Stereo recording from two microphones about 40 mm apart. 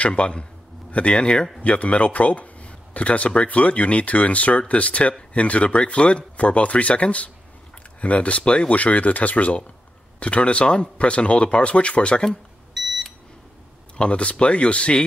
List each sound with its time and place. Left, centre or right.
0.0 s speech: left
12.3 s beep: centre
13.9 s speech: left